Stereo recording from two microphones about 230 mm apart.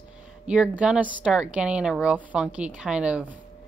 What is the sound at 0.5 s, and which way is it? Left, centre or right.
A woman's voice, centre.